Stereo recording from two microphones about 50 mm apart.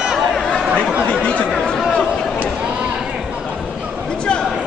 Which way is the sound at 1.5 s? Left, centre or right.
Centre.